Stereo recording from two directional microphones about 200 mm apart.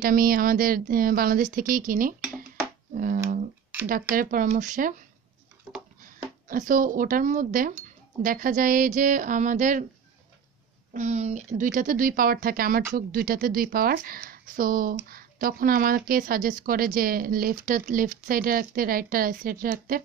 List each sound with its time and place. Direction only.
0.0 s speech: 45° right (ahead or behind)
6.0 s speech: 40° right (ahead or behind)
10.9 s speech: 35° right (ahead or behind)